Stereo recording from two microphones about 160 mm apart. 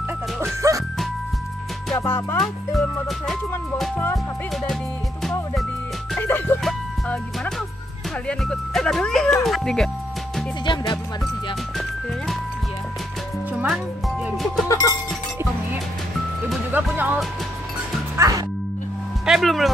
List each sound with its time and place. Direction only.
0.6 s music: 20° right (ahead or behind)
2.0 s music: 15° left (ahead or behind)
2.3 s speech: centre (ahead or behind)
3.9 s music: 15° left (ahead or behind)
6.1 s speech: 15° left (ahead or behind)
6.6 s music: 5° left (ahead or behind)
8.3 s speech: 5° left (ahead or behind)
10.6 s music: 30° left (ahead or behind)
13.5 s music: 10° right (ahead or behind)
14.7 s music: 20° left (ahead or behind)
16.7 s music: 10° right (ahead or behind)
19.2 s speech: centre (ahead or behind)